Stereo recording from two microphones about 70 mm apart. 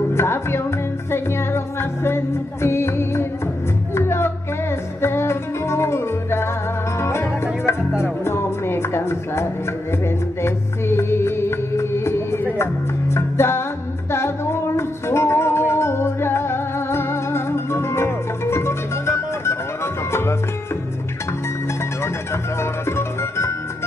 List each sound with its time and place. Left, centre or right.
0.1 s music: left
22.0 s music: left